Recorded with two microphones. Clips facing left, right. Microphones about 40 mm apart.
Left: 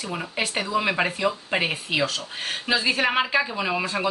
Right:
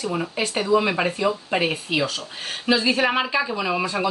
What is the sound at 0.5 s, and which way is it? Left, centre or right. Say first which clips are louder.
Speech: right 4 dB; centre.